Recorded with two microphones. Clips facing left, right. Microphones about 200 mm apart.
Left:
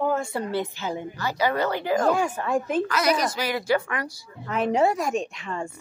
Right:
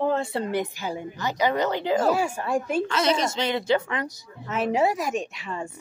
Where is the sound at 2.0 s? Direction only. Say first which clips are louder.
Left 1 dB; 5° right (ahead or behind).